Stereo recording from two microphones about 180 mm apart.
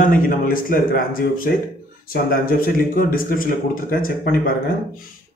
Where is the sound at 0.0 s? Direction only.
50° left (ahead or behind).